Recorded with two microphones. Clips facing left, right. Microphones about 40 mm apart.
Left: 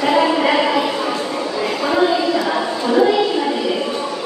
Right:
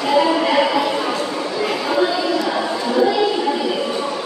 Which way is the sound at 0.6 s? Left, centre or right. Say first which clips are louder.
Even; centre.